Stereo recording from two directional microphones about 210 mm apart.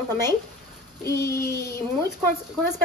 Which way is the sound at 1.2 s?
45° left (ahead or behind).